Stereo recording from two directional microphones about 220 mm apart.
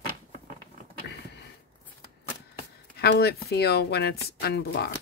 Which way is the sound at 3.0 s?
45° left (ahead or behind).